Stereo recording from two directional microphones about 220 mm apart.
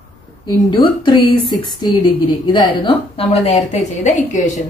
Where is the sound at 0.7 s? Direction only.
20° left (ahead or behind).